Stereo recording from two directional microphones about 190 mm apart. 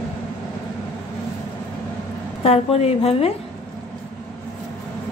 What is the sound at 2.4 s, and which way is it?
Speech, 30° left (ahead or behind).